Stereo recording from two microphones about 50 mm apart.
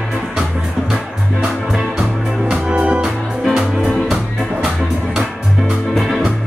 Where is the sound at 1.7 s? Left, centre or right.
Centre.